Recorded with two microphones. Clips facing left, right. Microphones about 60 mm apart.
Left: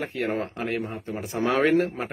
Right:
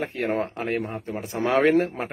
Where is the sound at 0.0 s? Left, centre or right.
Right.